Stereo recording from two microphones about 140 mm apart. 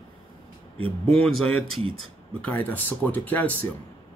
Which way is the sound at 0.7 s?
45° right (ahead or behind).